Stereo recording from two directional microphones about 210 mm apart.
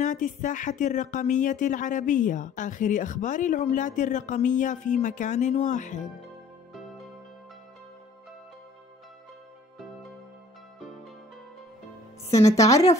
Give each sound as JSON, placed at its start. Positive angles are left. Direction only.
{"t": 0.0, "sound": "speech", "side_deg": 35}
{"t": 12.3, "sound": "a woman's voice", "side_deg": 15}